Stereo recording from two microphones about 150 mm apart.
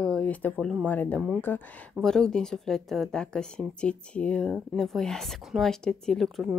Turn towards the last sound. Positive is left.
turn(degrees=0)  # may be behind; listen again after turning